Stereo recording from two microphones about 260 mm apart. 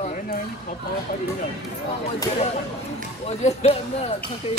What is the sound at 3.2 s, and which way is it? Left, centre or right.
Speech, left.